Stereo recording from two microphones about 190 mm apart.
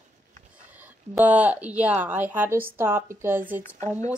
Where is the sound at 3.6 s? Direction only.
40° right (ahead or behind).